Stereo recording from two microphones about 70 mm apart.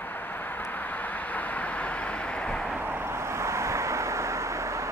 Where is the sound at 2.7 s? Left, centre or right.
Right.